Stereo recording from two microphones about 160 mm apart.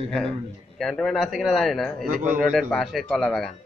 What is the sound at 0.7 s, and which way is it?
Speech, centre (ahead or behind).